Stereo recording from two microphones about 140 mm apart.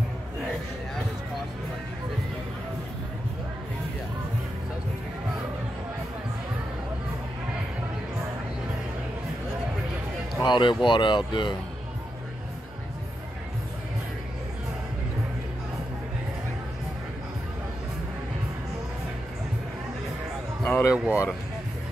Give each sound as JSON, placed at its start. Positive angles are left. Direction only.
{"t": 10.4, "sound": "speech", "side_deg": 35}
{"t": 20.6, "sound": "music", "side_deg": 15}
{"t": 20.9, "sound": "speech", "side_deg": -5}